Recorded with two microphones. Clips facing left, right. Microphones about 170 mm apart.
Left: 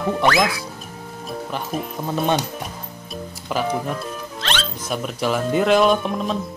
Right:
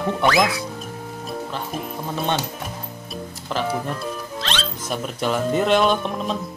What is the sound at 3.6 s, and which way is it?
Speech, centre (ahead or behind).